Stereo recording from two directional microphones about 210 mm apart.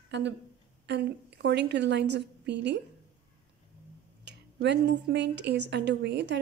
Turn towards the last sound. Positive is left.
turn(degrees=-55)  # may be behind; listen again after turning